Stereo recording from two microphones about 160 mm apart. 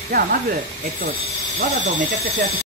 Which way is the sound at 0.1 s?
65° right (ahead or behind).